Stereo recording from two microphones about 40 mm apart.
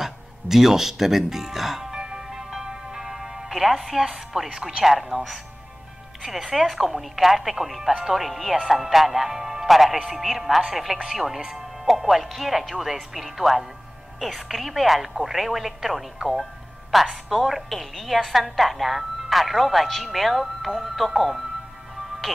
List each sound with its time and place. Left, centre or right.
0.0 s music: centre
4.5 s a woman's voice: centre